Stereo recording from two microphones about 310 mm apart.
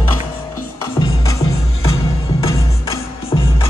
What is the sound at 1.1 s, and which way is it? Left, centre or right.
Music, left.